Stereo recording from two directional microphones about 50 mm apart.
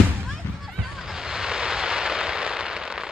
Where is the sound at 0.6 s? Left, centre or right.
Centre.